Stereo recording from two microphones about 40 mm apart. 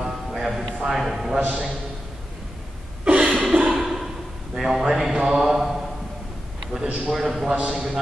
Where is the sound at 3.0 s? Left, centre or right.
Right.